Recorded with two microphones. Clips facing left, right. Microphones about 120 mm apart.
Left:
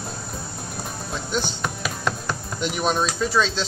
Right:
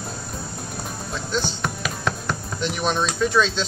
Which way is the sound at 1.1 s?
10° left (ahead or behind).